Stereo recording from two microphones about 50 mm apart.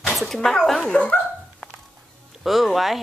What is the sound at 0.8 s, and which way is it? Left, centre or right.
Speech, left.